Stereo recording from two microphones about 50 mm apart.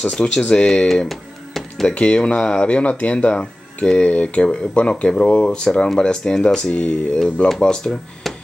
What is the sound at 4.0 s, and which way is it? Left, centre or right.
Speech, left.